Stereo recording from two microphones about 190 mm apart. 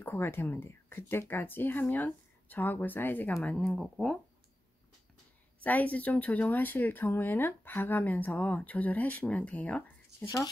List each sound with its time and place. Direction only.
0.0 s speech: 10° left (ahead or behind)
5.6 s speech: 10° left (ahead or behind)
10.2 s speech: 20° left (ahead or behind)